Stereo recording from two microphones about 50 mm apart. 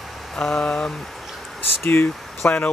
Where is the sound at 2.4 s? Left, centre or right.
Left.